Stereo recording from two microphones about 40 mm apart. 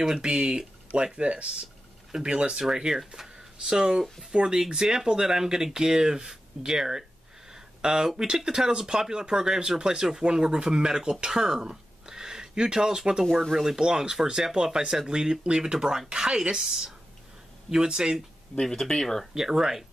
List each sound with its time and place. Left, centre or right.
0.2 s speech: right
2.5 s speech: centre
4.6 s speech: centre
13.2 s speech: centre
13.7 s speech: centre
18.6 s speech: centre
19.3 s speech: centre